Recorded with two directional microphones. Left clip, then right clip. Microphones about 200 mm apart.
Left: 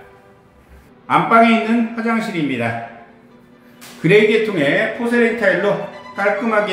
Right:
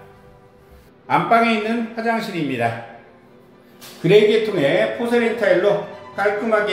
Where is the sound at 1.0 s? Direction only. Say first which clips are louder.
Left 4 dB; centre (ahead or behind).